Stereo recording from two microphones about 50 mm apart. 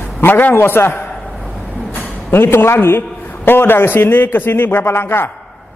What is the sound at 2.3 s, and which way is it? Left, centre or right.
A man's voice, left.